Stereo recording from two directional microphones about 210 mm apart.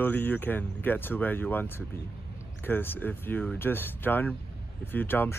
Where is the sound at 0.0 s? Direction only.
10° left (ahead or behind).